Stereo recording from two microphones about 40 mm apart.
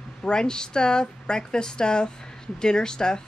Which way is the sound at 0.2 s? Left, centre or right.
Centre.